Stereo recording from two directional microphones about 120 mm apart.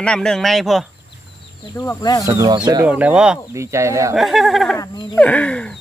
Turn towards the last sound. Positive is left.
turn(degrees=10)  # may be behind; listen again after turning